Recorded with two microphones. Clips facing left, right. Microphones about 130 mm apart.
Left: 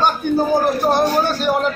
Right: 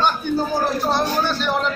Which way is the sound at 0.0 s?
50° left (ahead or behind).